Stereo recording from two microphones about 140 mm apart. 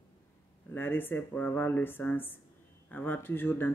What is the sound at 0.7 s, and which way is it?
Speech, 15° left (ahead or behind).